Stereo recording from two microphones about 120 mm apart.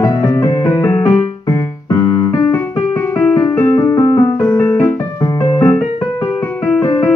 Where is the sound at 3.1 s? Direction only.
15° left (ahead or behind).